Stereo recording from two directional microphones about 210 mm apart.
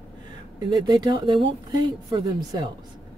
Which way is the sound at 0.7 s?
20° right (ahead or behind).